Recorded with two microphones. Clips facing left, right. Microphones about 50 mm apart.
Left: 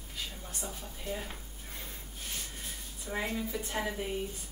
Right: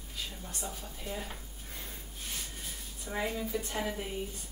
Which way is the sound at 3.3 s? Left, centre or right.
Centre.